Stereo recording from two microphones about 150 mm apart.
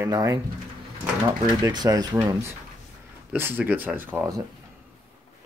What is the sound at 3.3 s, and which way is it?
Speech, 15° right (ahead or behind).